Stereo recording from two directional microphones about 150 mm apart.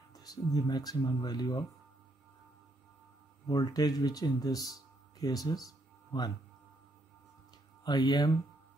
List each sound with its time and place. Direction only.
0.1 s speech: 25° left (ahead or behind)
3.4 s speech: 25° left (ahead or behind)
7.8 s speech: 30° left (ahead or behind)